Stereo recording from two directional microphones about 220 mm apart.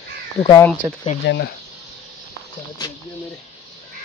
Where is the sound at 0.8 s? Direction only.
10° right (ahead or behind).